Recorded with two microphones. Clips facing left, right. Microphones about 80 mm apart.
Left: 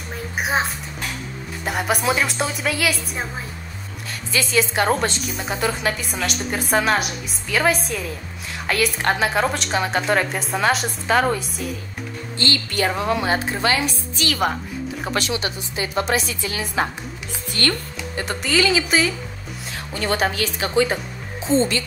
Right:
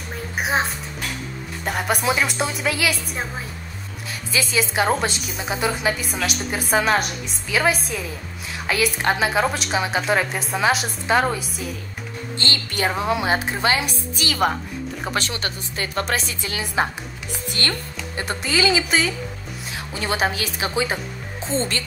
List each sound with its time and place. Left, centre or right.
0.4 s music: centre
1.6 s a woman's voice: centre
4.3 s a woman's voice: centre
12.8 s a woman's voice: centre
14.1 s a woman's voice: centre
16.5 s a woman's voice: centre
17.6 s speech: centre
18.4 s a woman's voice: centre